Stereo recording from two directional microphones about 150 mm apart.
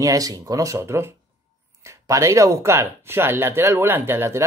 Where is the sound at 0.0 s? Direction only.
25° right (ahead or behind).